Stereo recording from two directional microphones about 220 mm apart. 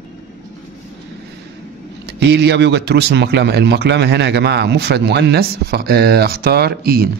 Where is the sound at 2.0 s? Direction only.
50° right (ahead or behind).